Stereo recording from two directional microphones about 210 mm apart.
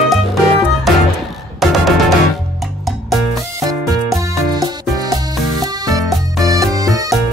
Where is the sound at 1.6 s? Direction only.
Centre (ahead or behind).